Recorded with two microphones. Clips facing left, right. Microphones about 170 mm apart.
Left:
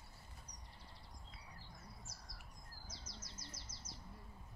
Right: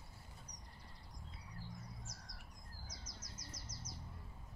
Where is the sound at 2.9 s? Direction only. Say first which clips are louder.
Left 1 dB; 30° left (ahead or behind).